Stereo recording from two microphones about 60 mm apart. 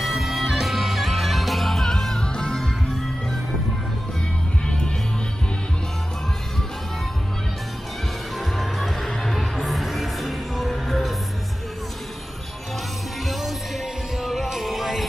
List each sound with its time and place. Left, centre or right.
0.0 s music: centre
4.6 s music: centre
8.4 s music: centre
14.2 s music: centre